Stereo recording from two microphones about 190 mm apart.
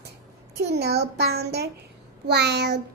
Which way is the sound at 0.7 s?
60° right (ahead or behind).